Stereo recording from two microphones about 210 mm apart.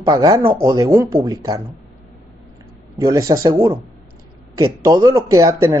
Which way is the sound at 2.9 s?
15° right (ahead or behind).